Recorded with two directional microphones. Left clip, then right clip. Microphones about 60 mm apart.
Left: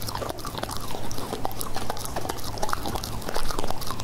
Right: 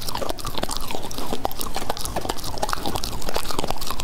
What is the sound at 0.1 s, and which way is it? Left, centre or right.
Chewing, right.